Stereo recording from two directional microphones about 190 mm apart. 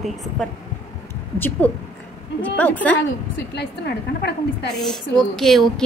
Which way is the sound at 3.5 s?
60° left (ahead or behind).